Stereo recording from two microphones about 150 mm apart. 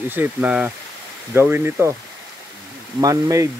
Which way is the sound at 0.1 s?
10° right (ahead or behind).